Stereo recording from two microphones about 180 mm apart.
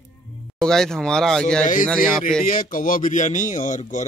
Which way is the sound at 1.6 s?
45° left (ahead or behind).